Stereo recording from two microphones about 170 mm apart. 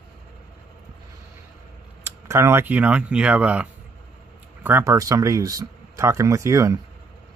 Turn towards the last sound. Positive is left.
turn(degrees=-20)  # may be behind; listen again after turning